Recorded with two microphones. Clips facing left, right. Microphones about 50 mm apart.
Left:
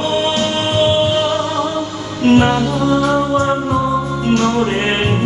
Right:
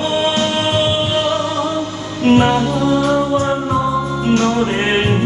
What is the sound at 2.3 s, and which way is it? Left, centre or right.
Music, centre.